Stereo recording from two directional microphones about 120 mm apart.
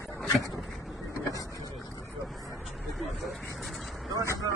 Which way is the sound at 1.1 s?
30° left (ahead or behind).